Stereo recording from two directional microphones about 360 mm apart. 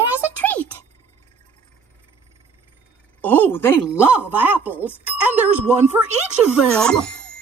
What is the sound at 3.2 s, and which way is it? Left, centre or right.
Speech, centre.